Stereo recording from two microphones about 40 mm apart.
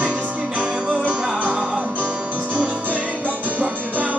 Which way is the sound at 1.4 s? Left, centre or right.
Right.